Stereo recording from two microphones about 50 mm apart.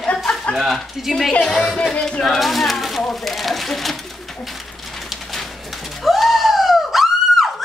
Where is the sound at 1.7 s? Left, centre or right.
Centre.